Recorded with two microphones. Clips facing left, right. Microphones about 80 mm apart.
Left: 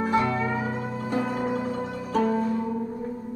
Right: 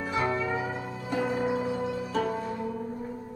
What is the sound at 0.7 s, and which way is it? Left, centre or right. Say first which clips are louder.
Music: left 4 dB; left.